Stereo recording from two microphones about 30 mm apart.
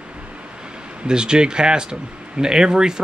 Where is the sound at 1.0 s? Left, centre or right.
Right.